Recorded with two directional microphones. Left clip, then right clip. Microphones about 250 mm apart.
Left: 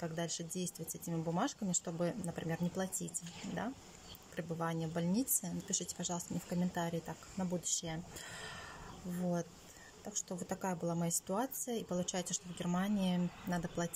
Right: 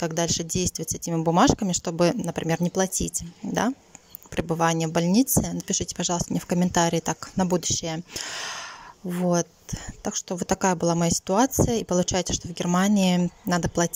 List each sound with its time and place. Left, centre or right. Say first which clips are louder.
0.0 s speech: right 15 dB; right